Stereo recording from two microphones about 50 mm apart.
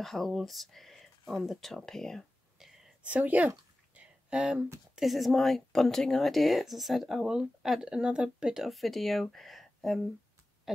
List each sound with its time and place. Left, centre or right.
0.0 s speech: centre
3.1 s a sound: right
4.9 s speech: centre
8.6 s speech: centre